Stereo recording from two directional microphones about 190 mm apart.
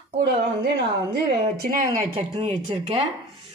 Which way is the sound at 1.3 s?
50° right (ahead or behind).